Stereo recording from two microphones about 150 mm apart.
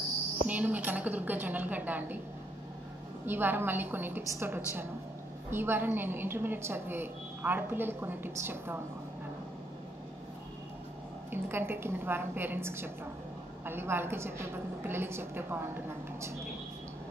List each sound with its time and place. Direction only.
0.5 s a woman's voice: 10° right (ahead or behind)
3.3 s a woman's voice: 15° right (ahead or behind)
11.2 s a woman's voice: 15° right (ahead or behind)